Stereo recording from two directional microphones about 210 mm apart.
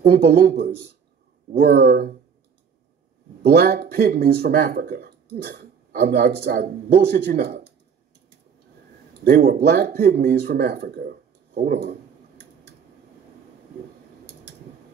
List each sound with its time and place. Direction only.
0.2 s speech: 45° right (ahead or behind)
3.4 s speech: 45° right (ahead or behind)
9.2 s speech: 45° right (ahead or behind)